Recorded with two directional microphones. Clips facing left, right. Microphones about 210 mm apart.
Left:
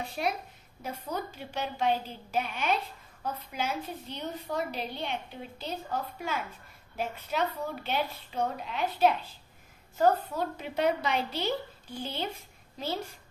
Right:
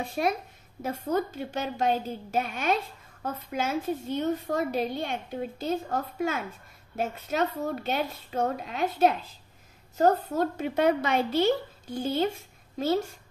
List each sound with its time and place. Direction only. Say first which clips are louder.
0.8 s a woman's voice: right 8 dB; 50° right (ahead or behind)